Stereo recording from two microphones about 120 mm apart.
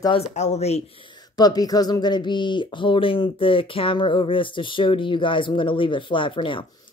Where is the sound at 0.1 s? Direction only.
65° left (ahead or behind).